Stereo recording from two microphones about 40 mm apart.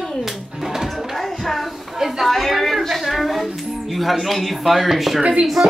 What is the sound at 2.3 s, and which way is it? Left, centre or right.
Speech, centre.